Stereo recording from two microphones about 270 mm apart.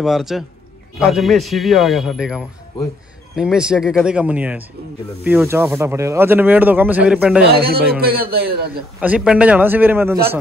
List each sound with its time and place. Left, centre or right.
0.0 s a man's voice: centre
7.5 s a man's voice: right
9.0 s speech: centre